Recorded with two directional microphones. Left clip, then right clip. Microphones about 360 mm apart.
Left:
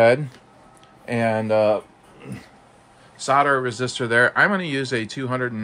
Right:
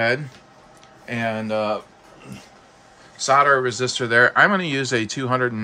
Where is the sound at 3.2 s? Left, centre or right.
Centre.